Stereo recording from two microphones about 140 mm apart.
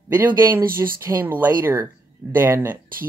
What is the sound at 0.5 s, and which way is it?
Speech, 15° right (ahead or behind).